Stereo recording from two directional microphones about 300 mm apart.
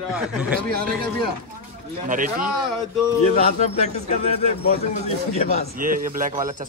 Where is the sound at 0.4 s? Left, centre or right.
Centre.